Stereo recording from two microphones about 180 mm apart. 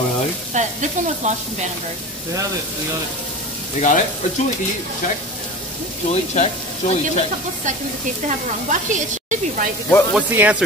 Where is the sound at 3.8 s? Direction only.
45° left (ahead or behind).